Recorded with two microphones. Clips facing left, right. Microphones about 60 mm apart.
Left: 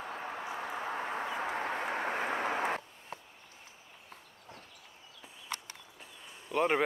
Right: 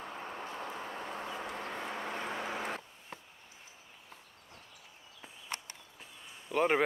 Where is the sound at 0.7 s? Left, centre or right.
Left.